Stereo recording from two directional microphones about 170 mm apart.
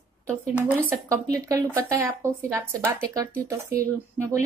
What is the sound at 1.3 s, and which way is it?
Speech, 20° right (ahead or behind).